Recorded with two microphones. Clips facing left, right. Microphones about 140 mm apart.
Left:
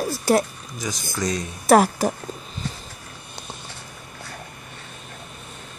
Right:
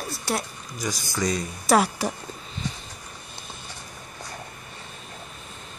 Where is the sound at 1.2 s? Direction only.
Centre (ahead or behind).